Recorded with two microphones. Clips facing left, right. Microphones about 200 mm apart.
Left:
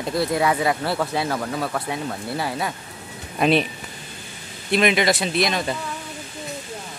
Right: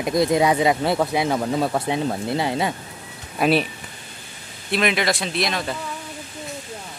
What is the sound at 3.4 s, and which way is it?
Speech, 5° right (ahead or behind).